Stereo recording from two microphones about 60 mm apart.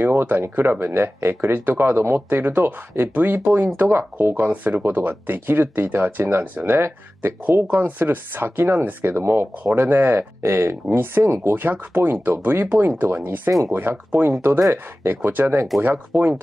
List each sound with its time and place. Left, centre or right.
0.0 s speech: right
10.4 s speech: right
11.5 s speech: right